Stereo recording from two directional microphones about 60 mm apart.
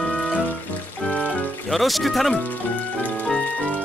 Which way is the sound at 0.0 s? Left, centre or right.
Centre.